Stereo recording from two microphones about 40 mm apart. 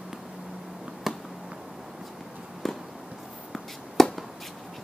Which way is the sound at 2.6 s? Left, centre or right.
Centre.